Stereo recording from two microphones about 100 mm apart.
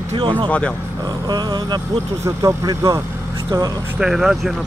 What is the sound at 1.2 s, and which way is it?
Speech, 45° right (ahead or behind).